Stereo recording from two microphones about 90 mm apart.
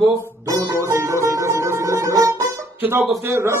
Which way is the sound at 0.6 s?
30° right (ahead or behind).